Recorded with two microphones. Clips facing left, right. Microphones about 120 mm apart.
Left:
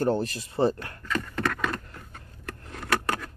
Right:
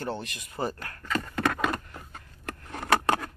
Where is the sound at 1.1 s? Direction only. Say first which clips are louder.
Right 1 dB; 10° right (ahead or behind).